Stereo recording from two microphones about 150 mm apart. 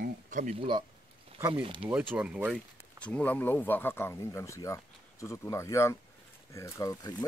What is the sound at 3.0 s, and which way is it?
Speech, 10° left (ahead or behind).